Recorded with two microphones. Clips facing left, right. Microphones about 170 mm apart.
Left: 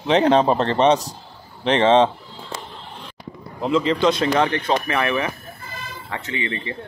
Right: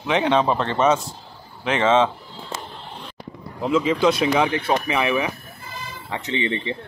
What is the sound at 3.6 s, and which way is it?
Speech, centre (ahead or behind).